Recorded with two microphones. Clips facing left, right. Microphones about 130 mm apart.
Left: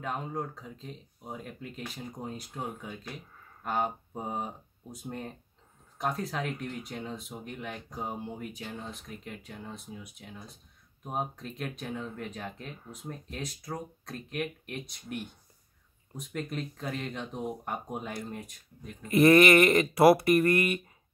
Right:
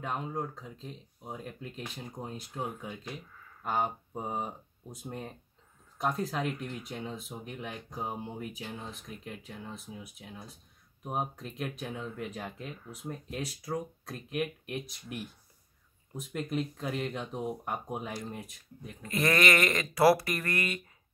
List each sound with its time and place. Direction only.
0.0 s speech: centre (ahead or behind)
11.1 s speech: 5° right (ahead or behind)
19.1 s speech: 25° left (ahead or behind)